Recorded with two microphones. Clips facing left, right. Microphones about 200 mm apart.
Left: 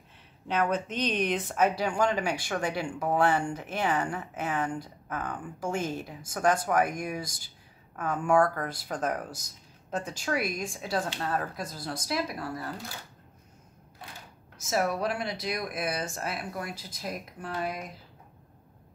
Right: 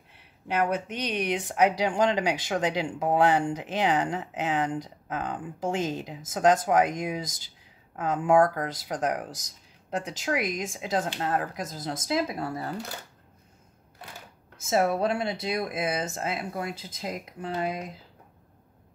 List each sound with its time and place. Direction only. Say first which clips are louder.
0.5 s speech: right 1 dB; 10° right (ahead or behind)
14.7 s speech: right 4 dB; 25° right (ahead or behind)